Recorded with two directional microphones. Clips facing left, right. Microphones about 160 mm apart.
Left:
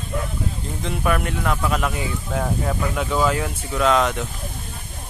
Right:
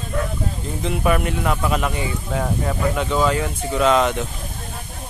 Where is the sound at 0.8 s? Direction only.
5° right (ahead or behind).